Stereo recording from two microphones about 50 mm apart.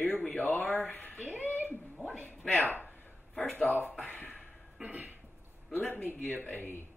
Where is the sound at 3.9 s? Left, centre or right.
Left.